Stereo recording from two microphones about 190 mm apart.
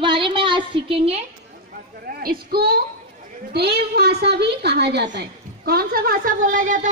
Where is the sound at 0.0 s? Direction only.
25° right (ahead or behind).